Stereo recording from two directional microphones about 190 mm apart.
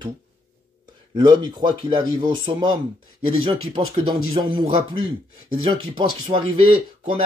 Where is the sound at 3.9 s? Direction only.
25° right (ahead or behind).